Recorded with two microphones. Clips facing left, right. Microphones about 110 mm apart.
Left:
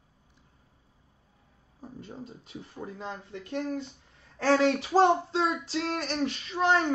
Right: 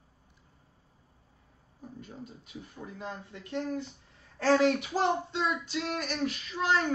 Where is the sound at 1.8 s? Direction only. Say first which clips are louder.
Left 2 dB; 35° left (ahead or behind).